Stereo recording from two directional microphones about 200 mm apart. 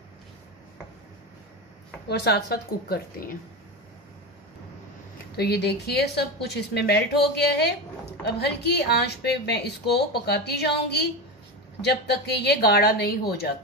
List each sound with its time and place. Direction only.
2.0 s a woman's voice: 55° left (ahead or behind)
5.3 s a woman's voice: 50° left (ahead or behind)